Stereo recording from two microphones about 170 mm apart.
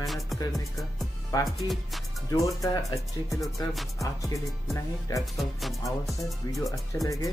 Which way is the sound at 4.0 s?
20° left (ahead or behind).